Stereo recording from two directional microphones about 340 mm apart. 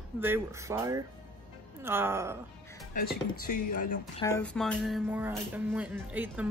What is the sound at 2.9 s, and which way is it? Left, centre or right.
Speech, left.